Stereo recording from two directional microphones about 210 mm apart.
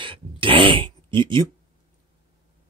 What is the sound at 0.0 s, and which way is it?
Throat clearing, 25° right (ahead or behind).